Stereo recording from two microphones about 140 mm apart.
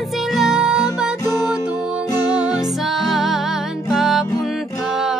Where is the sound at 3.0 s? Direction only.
Centre (ahead or behind).